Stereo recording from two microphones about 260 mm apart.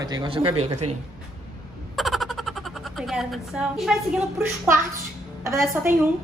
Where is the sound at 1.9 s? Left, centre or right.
Centre.